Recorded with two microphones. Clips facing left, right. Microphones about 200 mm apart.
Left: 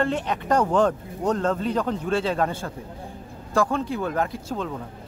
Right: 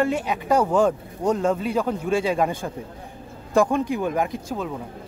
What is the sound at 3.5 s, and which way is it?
Speech, 15° right (ahead or behind).